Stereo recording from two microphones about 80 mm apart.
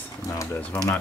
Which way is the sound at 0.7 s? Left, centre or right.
Centre.